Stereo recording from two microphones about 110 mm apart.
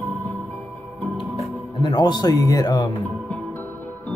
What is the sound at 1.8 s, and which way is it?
A man's voice, 45° left (ahead or behind).